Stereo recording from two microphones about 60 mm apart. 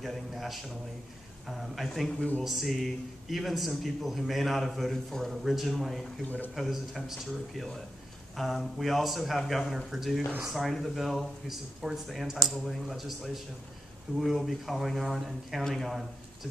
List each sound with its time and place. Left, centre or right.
0.0 s speech: centre
6.2 s speech: left
6.5 s speech: centre